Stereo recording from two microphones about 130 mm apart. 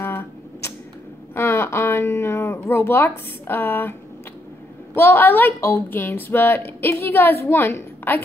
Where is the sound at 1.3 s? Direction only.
20° left (ahead or behind).